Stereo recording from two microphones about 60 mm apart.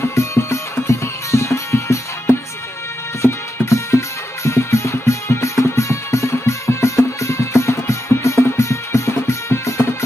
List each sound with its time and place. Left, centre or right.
0.0 s music: left